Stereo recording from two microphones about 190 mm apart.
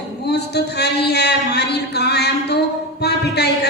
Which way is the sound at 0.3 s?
60° left (ahead or behind).